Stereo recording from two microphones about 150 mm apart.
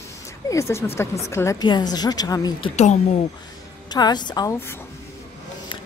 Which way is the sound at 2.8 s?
50° left (ahead or behind).